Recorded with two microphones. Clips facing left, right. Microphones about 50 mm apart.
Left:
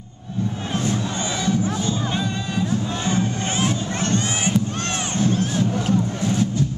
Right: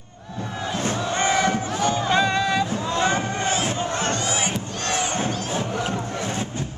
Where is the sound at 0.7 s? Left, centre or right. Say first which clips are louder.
Right 1 dB; right.